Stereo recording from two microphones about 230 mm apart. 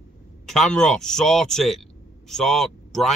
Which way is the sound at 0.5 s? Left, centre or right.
Centre.